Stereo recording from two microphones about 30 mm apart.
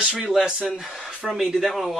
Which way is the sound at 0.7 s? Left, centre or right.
Centre.